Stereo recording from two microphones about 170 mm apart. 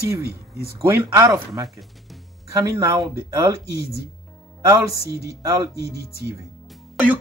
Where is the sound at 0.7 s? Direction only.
15° right (ahead or behind).